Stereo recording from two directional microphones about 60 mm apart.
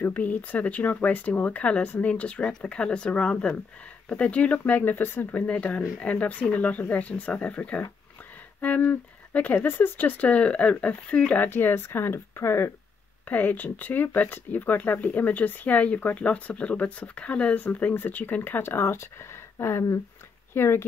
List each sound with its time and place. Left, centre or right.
0.0 s speech: left
5.3 s speech: left
11.4 s speech: left
13.3 s speech: left